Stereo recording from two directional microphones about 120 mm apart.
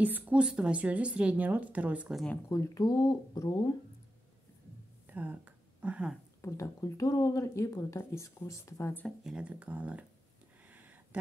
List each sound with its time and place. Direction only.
0.0 s a woman's voice: 10° right (ahead or behind)
2.5 s speech: 25° left (ahead or behind)
5.1 s a sound: 15° right (ahead or behind)
6.4 s speech: 25° left (ahead or behind)
9.0 s a woman's voice: 5° right (ahead or behind)
10.7 s a sound: 15° right (ahead or behind)